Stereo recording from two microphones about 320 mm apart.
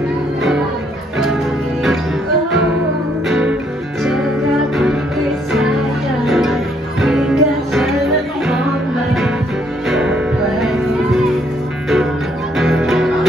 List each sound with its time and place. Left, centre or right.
3.3 s music: centre
6.2 s music: centre
9.8 s music: centre
12.5 s music: centre